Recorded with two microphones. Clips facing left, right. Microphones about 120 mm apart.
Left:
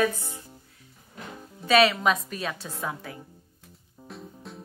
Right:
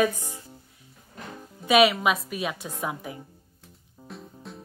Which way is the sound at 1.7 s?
15° right (ahead or behind).